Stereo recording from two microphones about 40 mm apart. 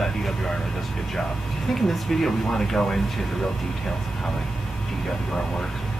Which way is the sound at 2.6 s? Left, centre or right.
Centre.